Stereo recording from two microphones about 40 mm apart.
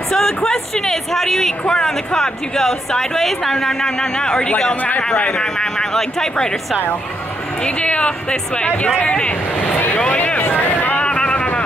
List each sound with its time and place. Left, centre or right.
0.1 s speech: centre
6.7 s speech: left
7.6 s speech: left
10.1 s speech: left
10.4 s boat: left
11.1 s vehicle: left